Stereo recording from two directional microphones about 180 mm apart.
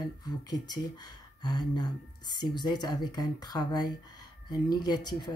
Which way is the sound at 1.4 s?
25° left (ahead or behind).